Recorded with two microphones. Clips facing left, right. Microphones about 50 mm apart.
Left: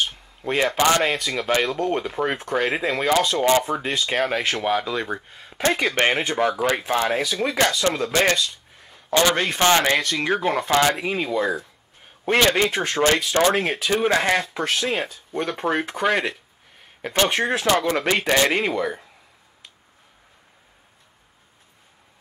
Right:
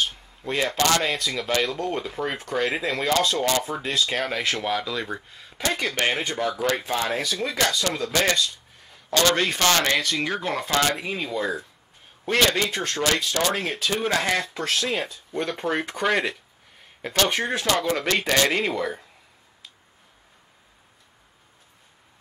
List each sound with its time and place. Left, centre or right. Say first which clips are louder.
0.5 s speech: left 3 dB; left
12.4 s speech: left 4 dB; left; by 16.3 s centre
17.1 s speech: left 3 dB; left